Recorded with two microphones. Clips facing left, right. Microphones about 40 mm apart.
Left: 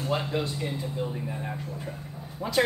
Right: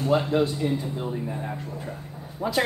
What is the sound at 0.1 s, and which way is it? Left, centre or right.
Speech, centre.